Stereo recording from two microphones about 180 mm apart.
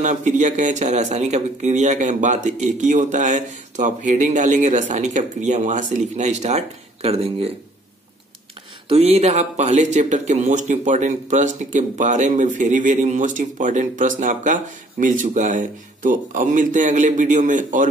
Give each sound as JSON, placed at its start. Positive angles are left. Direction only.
{"t": 0.0, "sound": "speech", "side_deg": -40}
{"t": 8.8, "sound": "speech", "side_deg": -35}